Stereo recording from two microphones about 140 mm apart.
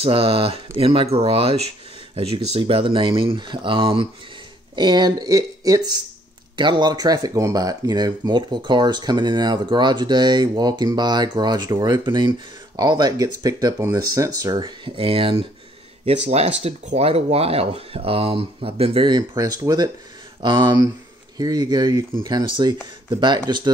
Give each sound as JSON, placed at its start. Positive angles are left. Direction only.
{"t": 0.0, "sound": "speech", "side_deg": -40}
{"t": 15.0, "sound": "speech", "side_deg": -40}